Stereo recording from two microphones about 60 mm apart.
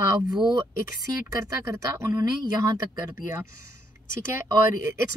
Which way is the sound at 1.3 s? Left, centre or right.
Right.